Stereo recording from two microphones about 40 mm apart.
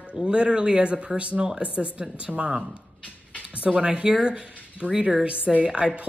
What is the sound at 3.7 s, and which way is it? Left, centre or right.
Speech, right.